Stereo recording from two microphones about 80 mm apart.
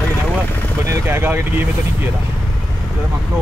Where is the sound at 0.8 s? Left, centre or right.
Right.